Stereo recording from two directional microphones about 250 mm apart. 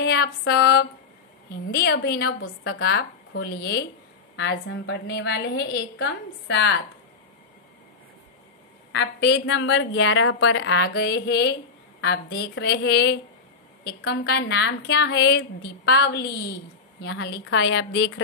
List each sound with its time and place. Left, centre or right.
0.0 s a sound: left
1.7 s a woman's voice: left
8.9 s a woman's voice: left